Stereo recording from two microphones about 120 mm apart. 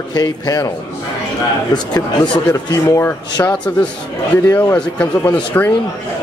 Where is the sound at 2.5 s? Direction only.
25° left (ahead or behind).